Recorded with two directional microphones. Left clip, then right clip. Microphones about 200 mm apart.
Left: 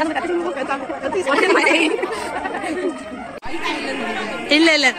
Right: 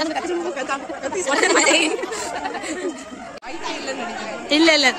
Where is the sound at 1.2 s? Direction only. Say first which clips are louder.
Left 2 dB; 25° right (ahead or behind).